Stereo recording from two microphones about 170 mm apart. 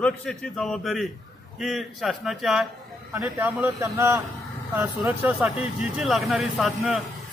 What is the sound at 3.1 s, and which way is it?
A man's voice, 15° right (ahead or behind).